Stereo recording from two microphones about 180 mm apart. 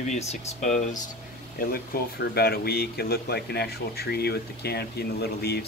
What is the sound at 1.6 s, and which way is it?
Speech, 55° left (ahead or behind).